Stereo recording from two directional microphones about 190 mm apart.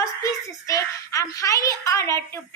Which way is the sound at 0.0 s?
15° left (ahead or behind).